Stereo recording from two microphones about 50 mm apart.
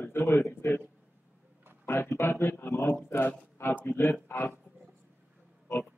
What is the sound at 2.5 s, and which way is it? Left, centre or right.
A man's voice, left.